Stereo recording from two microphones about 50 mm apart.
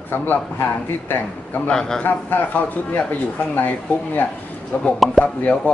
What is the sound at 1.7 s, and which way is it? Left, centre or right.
Speech, centre.